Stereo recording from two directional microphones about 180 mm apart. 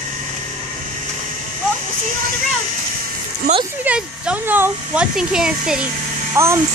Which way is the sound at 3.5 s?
55° right (ahead or behind).